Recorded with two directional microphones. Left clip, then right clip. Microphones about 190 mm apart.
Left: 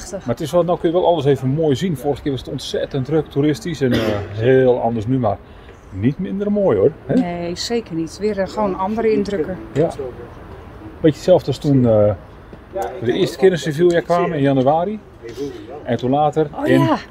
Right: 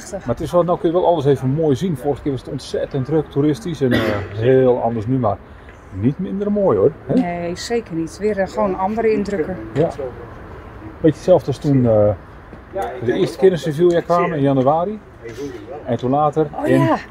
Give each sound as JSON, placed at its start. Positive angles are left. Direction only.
{"t": 0.3, "sound": "speech", "side_deg": -5}
{"t": 7.2, "sound": "speech", "side_deg": 20}
{"t": 11.0, "sound": "speech", "side_deg": 0}
{"t": 16.5, "sound": "speech", "side_deg": 15}